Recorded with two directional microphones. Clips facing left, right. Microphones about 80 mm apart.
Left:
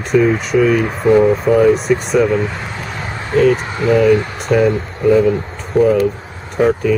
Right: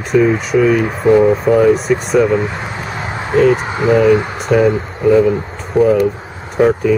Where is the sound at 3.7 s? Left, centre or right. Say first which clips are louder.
Right 2 dB; centre.